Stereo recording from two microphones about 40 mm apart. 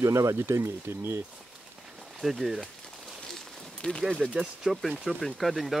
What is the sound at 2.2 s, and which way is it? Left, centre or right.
Speech, centre.